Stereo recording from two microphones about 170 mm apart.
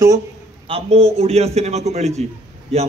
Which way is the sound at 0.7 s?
35° right (ahead or behind).